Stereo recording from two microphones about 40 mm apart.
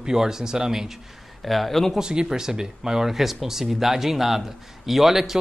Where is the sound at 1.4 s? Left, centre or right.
Centre.